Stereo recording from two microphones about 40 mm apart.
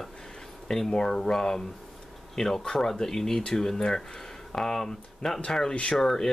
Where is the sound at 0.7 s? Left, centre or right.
Centre.